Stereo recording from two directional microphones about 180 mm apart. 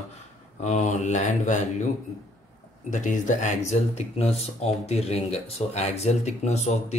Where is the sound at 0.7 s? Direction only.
40° left (ahead or behind).